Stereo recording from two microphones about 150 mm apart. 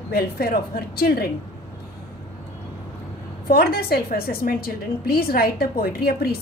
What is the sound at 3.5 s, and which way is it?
A woman's voice, 90° left.